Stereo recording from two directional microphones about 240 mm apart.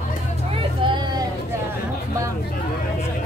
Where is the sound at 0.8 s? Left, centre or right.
Centre.